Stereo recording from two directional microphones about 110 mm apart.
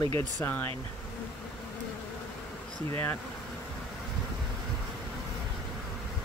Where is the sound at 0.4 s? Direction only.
15° left (ahead or behind).